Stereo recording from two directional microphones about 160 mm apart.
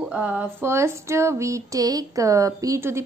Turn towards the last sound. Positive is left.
turn(degrees=-15)  # may be behind; listen again after turning